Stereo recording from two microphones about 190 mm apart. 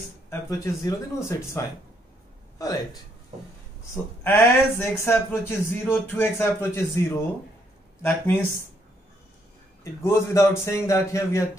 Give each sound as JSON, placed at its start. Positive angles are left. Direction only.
{"t": 0.3, "sound": "a man's voice", "side_deg": 15}
{"t": 3.9, "sound": "a man's voice", "side_deg": 10}
{"t": 10.0, "sound": "a man's voice", "side_deg": 15}